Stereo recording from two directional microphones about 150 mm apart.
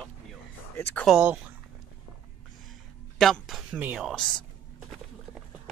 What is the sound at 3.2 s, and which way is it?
Speech, centre (ahead or behind).